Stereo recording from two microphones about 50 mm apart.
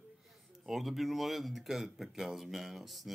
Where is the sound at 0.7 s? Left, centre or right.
Centre.